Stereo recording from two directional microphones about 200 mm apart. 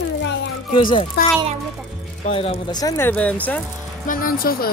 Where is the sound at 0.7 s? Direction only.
25° left (ahead or behind).